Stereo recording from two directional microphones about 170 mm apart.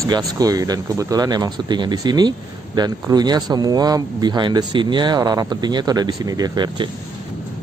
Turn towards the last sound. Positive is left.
turn(degrees=-25)  # may be behind; listen again after turning